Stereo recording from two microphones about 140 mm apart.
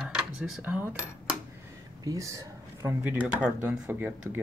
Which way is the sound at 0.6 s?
10° right (ahead or behind).